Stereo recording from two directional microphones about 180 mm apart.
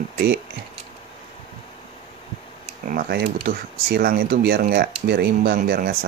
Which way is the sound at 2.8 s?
55° right (ahead or behind).